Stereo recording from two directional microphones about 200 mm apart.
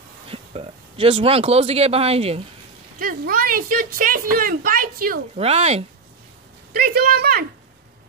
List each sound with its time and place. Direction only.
0.3 s a man's voice: 30° right (ahead or behind)
3.0 s speech: 45° right (ahead or behind)
5.3 s speech: 30° right (ahead or behind)
6.7 s speech: 50° right (ahead or behind)